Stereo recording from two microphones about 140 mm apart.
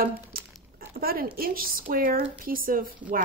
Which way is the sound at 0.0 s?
90° right.